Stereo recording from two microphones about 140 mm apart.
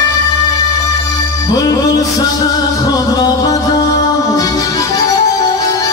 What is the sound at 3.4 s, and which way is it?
Music, 25° left (ahead or behind).